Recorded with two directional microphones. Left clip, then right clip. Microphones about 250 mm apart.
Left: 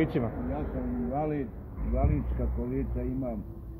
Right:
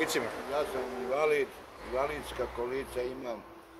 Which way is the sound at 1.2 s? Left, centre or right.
Right.